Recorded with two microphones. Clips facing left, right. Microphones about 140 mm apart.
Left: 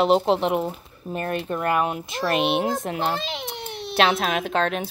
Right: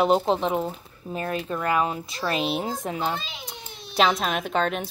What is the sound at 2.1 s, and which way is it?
Speech, 70° left (ahead or behind).